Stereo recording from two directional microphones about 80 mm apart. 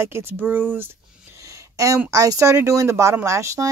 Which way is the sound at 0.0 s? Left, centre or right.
Right.